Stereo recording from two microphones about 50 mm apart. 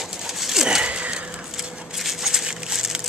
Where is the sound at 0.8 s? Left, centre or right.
Right.